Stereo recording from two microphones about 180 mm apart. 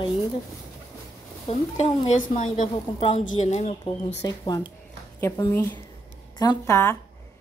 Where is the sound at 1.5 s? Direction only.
35° left (ahead or behind).